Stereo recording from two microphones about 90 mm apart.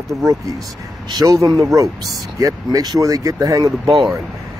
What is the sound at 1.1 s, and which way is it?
Speech, 40° right (ahead or behind).